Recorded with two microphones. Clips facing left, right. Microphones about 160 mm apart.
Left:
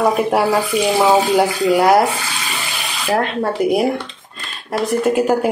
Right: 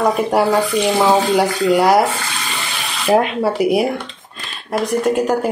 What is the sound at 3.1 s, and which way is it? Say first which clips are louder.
Speech: right 4 dB; 20° right (ahead or behind).